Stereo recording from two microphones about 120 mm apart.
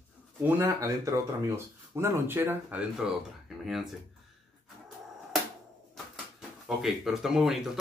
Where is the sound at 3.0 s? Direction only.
5° right (ahead or behind).